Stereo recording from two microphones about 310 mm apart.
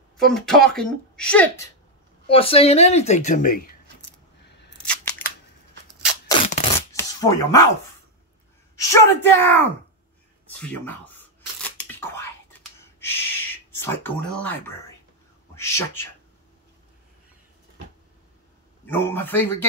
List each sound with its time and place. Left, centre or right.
0.3 s speech: centre
2.2 s a woman's voice: centre
4.5 s scissors: left
4.7 s scissors: centre
6.2 s a sound: centre
8.7 s speech: centre
10.9 s tearing: centre
15.5 s a sound: centre
18.9 s speech: centre